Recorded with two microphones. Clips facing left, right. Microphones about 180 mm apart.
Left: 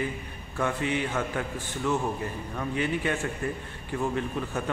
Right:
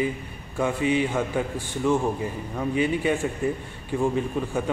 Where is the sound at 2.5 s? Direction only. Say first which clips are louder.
Right 5 dB; 15° right (ahead or behind).